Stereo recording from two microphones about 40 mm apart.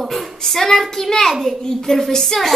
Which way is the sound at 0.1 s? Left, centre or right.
Centre.